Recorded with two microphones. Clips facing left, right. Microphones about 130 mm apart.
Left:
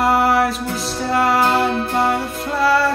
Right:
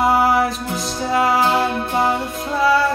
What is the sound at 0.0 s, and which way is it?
Music, centre (ahead or behind).